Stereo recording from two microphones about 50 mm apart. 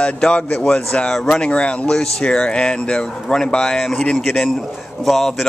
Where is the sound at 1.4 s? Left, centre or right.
Centre.